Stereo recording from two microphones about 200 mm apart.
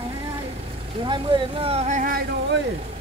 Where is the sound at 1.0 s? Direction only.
25° right (ahead or behind); by 2.2 s 40° right (ahead or behind).